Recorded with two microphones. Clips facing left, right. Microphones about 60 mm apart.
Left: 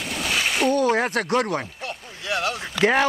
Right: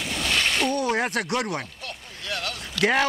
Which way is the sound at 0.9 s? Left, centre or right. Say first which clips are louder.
Left 3 dB; centre.